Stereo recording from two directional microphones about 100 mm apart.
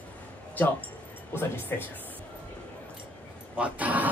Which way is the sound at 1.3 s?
20° left (ahead or behind).